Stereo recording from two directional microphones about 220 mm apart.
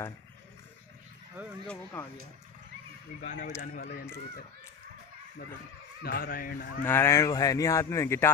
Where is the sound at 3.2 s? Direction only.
35° left (ahead or behind).